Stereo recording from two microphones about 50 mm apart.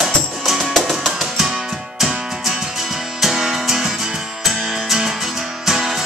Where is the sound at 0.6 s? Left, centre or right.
Centre.